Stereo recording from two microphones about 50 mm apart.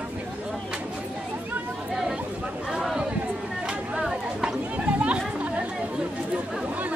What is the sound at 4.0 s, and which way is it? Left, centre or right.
Chatter, centre.